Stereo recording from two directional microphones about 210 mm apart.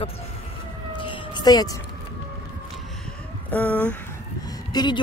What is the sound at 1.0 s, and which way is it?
Emergency vehicle, 20° left (ahead or behind).